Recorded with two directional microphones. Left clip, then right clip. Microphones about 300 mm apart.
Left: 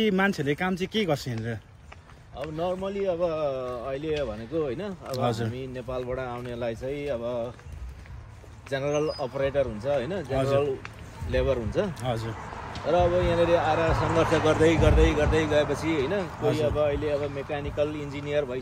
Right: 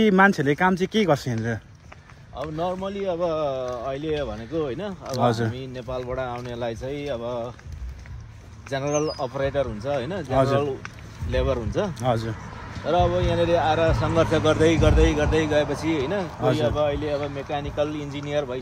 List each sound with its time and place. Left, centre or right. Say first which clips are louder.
0.0 s speech: right 7 dB; right
2.6 s speech: right 1 dB; centre
5.1 s speech: right 6 dB; right
5.5 s speech: right 2 dB; centre
8.6 s speech: right 2 dB; centre
11.2 s speech: right 1 dB; centre
11.9 s speech: right 6 dB; right
12.8 s speech: right 1 dB; centre